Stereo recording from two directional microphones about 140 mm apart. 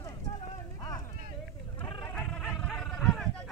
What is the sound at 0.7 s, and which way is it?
Vehicle, 25° left (ahead or behind).